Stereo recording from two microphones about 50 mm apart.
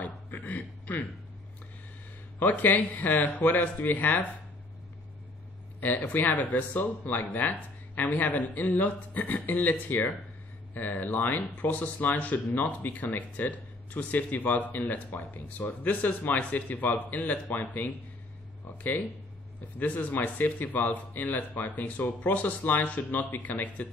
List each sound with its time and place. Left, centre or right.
0.0 s a sound: left
2.3 s speech: left
5.8 s speech: left